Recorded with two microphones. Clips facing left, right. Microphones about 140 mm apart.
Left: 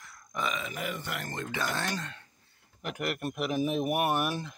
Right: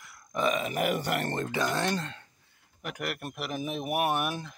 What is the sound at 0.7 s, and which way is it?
Speech, 65° right (ahead or behind).